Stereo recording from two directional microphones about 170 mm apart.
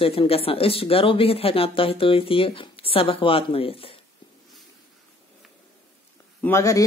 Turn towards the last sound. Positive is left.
turn(degrees=20)  # may be behind; listen again after turning